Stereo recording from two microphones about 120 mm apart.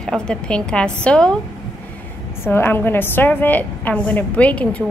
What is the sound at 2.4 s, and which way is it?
A woman's voice, 15° left (ahead or behind).